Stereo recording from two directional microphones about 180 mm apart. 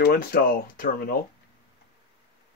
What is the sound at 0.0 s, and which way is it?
Speech, 55° left (ahead or behind).